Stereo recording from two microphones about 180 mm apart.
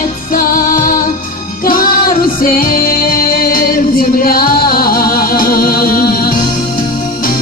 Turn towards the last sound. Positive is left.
turn(degrees=55)  # may be behind; listen again after turning